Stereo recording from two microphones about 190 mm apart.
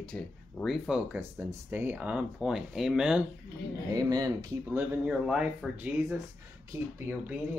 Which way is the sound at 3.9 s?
20° right (ahead or behind).